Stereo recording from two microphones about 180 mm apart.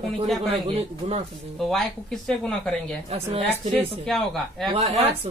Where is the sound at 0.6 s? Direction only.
35° right (ahead or behind).